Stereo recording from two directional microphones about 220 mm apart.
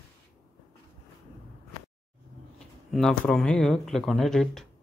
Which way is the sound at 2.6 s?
Centre (ahead or behind).